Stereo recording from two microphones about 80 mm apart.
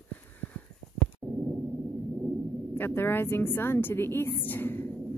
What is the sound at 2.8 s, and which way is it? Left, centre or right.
A woman's voice, left.